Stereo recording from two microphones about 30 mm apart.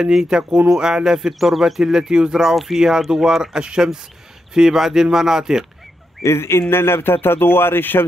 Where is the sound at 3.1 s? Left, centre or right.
Centre.